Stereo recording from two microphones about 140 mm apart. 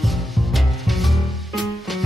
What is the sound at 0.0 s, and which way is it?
Music, centre (ahead or behind).